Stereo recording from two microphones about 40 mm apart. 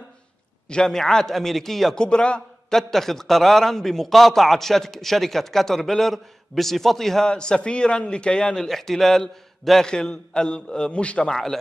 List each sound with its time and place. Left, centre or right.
0.7 s a man's voice: centre
2.0 s a man's voice: left
2.7 s a man's voice: centre
7.2 s a man's voice: centre
8.5 s a man's voice: centre
9.8 s a man's voice: centre